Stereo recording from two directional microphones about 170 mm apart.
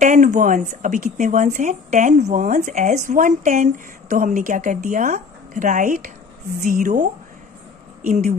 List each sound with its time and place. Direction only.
0.0 s speech: 50° right (ahead or behind)